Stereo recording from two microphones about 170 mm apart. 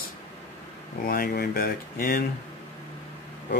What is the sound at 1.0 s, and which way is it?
Speech, 60° left (ahead or behind).